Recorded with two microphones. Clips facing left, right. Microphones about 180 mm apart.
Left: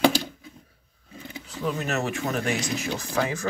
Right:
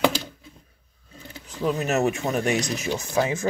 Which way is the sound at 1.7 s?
25° right (ahead or behind).